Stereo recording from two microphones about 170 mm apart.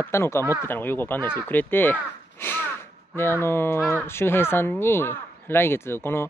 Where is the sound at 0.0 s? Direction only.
15° left (ahead or behind).